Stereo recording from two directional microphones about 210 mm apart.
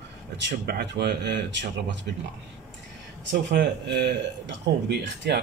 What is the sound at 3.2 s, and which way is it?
A man's voice, 55° right (ahead or behind).